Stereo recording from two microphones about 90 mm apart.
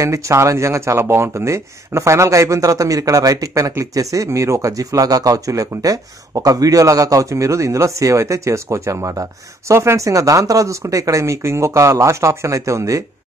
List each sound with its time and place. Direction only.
0.0 s speech: 35° right (ahead or behind)